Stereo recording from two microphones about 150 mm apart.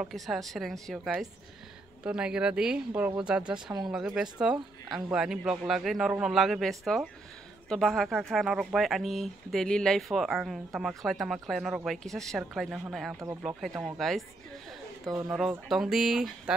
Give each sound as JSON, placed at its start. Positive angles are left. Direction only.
{"t": 0.0, "sound": "speech", "side_deg": 0}
{"t": 13.1, "sound": "speech", "side_deg": -20}
{"t": 13.4, "sound": "speech", "side_deg": -10}
{"t": 15.0, "sound": "speech", "side_deg": -20}
{"t": 15.7, "sound": "speech", "side_deg": -5}